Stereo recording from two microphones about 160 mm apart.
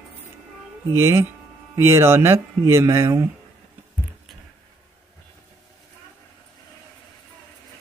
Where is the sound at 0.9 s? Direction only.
15° right (ahead or behind).